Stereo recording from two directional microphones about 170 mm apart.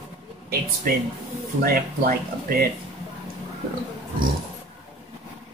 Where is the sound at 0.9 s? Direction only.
60° right (ahead or behind).